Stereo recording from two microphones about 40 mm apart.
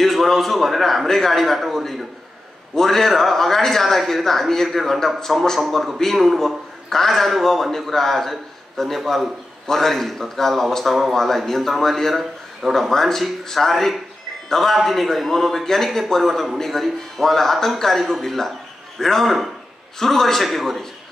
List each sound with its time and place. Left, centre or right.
0.0 s a man's voice: centre